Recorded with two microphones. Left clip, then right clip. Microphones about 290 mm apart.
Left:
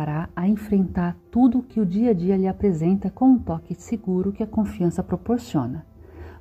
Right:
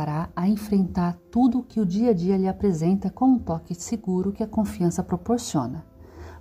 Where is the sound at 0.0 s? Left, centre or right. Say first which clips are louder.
Even; centre.